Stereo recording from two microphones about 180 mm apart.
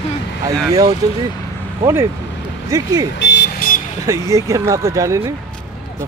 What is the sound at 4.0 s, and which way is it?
Speech, 15° right (ahead or behind).